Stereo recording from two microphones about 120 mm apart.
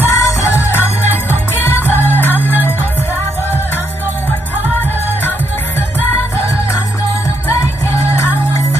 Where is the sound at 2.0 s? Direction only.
15° left (ahead or behind).